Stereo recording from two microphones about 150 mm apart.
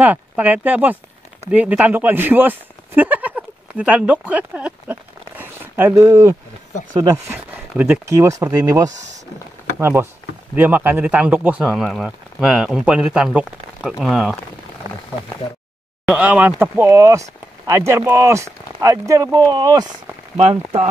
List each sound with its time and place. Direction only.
0.0 s speech: 10° right (ahead or behind)
7.7 s speech: 15° right (ahead or behind)
16.1 s speech: 10° right (ahead or behind); by 19.9 s 25° right (ahead or behind)
20.3 s speech: 45° right (ahead or behind)